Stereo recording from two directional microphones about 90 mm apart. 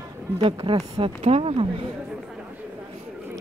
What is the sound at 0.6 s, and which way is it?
Speech, 85° right.